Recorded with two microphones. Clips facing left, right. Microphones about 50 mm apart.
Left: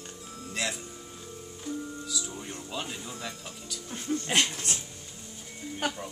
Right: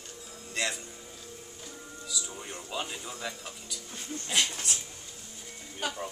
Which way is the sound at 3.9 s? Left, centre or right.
Left.